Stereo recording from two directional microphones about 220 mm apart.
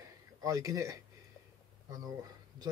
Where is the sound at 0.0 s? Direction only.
15° right (ahead or behind).